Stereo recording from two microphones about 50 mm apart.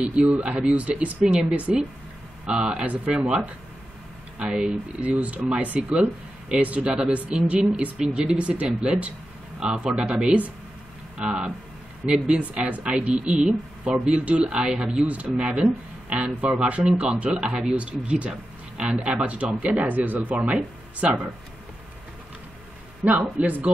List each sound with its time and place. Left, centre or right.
0.1 s speech: right
12.6 s speech: right
23.0 s speech: right